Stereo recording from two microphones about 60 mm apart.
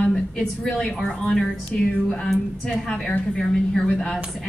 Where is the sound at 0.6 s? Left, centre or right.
Centre.